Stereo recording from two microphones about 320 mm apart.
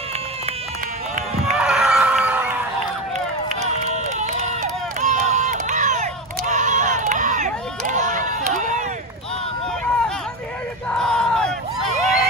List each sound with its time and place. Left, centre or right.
1.6 s chicken: centre
3.8 s run: right
5.0 s a sound: right
10.9 s crowd: centre